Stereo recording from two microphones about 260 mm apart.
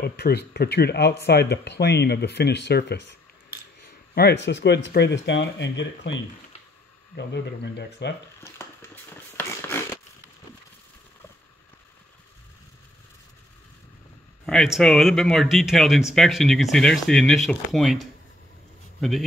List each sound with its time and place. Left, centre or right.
0.0 s speech: left
4.1 s speech: left
7.2 s speech: left
8.4 s dog: centre
14.4 s a man's voice: centre